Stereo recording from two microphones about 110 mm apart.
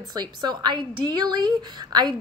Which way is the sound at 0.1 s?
40° right (ahead or behind).